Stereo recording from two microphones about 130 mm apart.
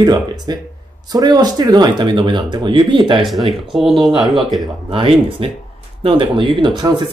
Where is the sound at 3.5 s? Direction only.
Centre (ahead or behind).